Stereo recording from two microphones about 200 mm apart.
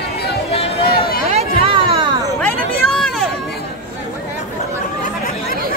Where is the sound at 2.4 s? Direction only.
5° left (ahead or behind).